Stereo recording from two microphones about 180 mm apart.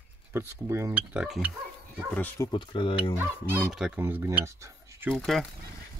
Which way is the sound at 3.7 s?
Centre (ahead or behind).